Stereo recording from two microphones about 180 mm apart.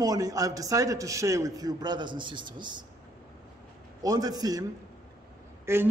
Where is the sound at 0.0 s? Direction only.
20° right (ahead or behind).